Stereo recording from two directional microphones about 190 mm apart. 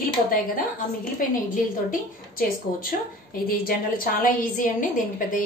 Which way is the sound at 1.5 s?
45° left (ahead or behind).